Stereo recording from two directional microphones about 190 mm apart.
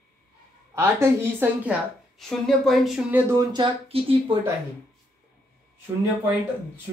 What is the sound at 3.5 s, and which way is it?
Speech, 25° right (ahead or behind).